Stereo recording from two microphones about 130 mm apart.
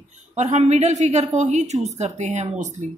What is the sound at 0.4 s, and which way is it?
A woman's voice, 60° right (ahead or behind).